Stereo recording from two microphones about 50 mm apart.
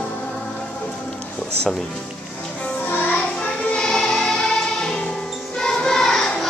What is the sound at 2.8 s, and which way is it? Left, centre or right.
Music, left.